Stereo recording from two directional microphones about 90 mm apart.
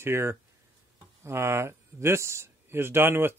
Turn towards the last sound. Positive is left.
turn(degrees=-25)  # may be behind; listen again after turning